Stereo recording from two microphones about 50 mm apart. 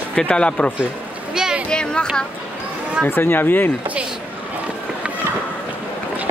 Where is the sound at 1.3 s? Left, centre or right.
Centre.